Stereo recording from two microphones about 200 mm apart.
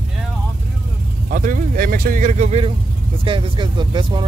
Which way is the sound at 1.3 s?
45° right (ahead or behind).